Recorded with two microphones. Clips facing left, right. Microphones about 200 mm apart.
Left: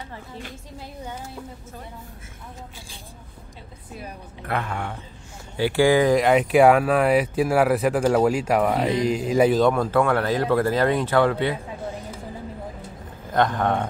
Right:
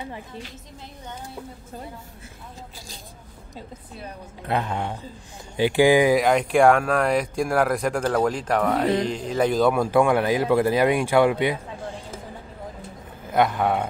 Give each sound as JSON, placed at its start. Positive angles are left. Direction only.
{"t": 4.5, "sound": "a man's voice", "side_deg": -20}
{"t": 6.1, "sound": "speech", "side_deg": 0}
{"t": 13.3, "sound": "a man's voice", "side_deg": -10}